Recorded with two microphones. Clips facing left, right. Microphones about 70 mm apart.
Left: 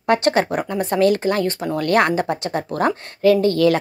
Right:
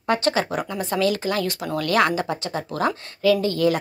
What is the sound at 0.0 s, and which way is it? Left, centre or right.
Speech, left.